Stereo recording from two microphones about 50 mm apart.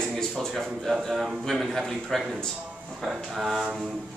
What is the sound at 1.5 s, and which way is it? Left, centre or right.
Speech, centre.